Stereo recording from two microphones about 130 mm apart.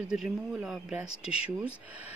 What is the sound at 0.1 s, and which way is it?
Speech, 5° right (ahead or behind).